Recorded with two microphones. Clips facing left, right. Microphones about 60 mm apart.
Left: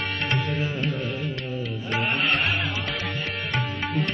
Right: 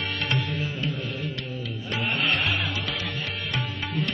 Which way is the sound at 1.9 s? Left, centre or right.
Left.